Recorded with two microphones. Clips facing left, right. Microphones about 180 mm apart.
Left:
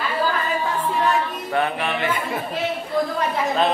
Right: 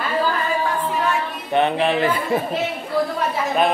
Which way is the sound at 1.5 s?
25° right (ahead or behind).